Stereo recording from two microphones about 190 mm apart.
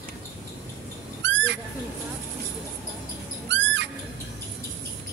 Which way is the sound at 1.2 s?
70° right (ahead or behind).